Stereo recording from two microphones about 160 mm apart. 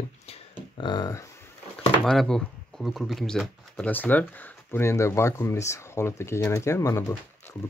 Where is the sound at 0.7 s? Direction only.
25° left (ahead or behind).